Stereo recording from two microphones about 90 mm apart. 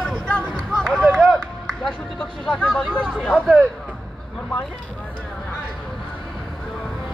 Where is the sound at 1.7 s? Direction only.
5° left (ahead or behind).